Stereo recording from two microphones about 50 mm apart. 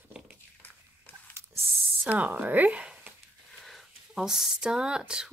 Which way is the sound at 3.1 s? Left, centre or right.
Right.